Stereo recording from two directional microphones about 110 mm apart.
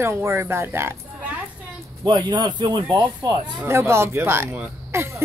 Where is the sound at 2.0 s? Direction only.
40° right (ahead or behind).